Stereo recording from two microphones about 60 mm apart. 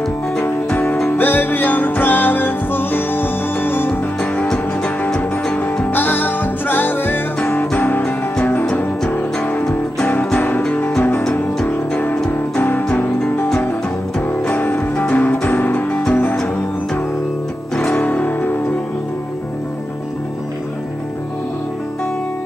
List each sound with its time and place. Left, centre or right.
1.0 s music: left
5.9 s music: left
11.0 s music: left
14.3 s music: left
17.7 s music: left